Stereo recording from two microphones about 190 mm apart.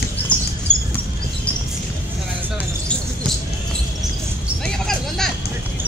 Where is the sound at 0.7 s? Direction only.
25° right (ahead or behind).